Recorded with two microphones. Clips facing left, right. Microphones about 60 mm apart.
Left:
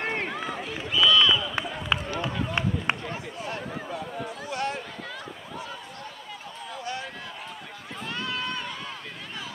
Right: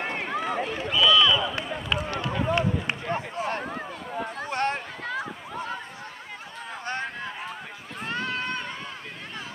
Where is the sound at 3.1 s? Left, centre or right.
Right.